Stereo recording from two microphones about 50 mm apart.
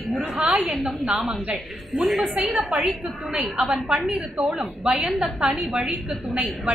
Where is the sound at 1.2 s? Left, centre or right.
Right.